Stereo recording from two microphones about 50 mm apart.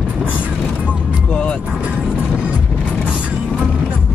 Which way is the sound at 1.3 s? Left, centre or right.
Left.